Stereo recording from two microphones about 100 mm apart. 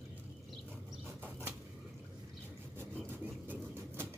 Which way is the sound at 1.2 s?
25° right (ahead or behind).